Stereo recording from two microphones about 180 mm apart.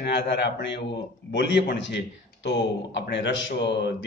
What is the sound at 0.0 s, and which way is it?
A man's voice, 75° left (ahead or behind).